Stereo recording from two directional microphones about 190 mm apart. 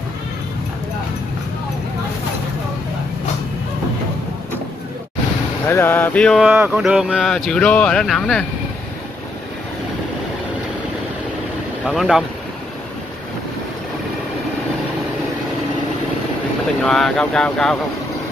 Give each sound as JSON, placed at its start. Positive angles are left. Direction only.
{"t": 5.7, "sound": "mantra", "side_deg": 10}
{"t": 6.5, "sound": "speech", "side_deg": -10}
{"t": 11.8, "sound": "speech", "side_deg": 0}
{"t": 16.8, "sound": "speech", "side_deg": 5}